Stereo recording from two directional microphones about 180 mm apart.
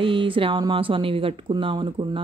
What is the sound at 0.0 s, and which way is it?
Speech, 30° right (ahead or behind).